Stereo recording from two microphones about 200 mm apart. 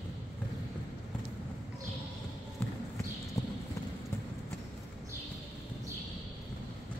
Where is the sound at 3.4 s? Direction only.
15° left (ahead or behind).